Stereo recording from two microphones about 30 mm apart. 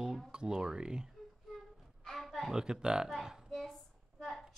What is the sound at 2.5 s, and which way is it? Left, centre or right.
Speech, right.